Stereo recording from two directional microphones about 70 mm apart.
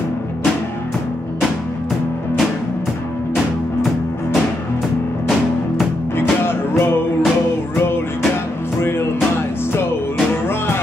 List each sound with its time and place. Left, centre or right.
6.8 s music: left